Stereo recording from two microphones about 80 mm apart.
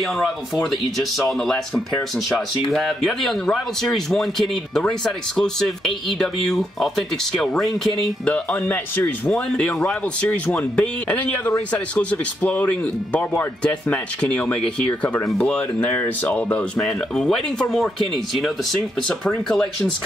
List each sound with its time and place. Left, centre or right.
0.7 s speech: centre
8.5 s speech: left
9.3 s speech: centre